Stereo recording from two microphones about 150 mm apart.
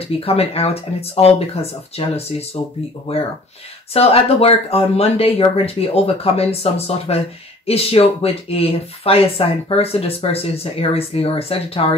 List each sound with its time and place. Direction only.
0.0 s speech: 40° left (ahead or behind)